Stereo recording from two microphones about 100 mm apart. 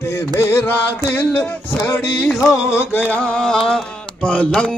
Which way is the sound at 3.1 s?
10° left (ahead or behind).